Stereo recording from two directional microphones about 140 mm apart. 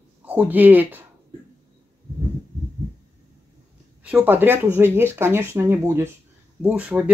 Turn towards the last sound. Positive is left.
turn(degrees=-10)  # may be behind; listen again after turning